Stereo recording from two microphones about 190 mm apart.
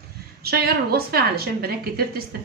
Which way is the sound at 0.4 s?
55° right (ahead or behind).